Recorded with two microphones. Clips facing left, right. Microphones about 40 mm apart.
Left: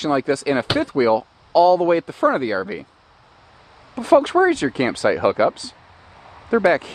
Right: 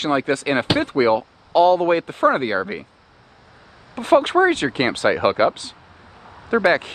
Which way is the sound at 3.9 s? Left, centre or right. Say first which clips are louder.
Left 1 dB; right.